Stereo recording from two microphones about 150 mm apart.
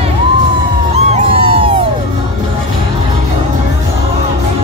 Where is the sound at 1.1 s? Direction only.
40° right (ahead or behind).